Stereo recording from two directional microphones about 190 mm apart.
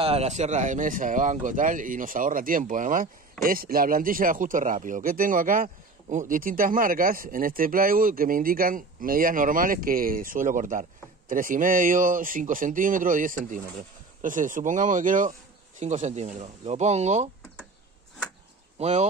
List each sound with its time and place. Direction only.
0.0 s speech: 35° right (ahead or behind)
18.8 s speech: 35° right (ahead or behind)